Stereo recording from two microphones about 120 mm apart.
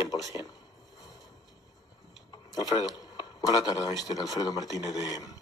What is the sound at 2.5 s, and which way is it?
Speech, 30° left (ahead or behind).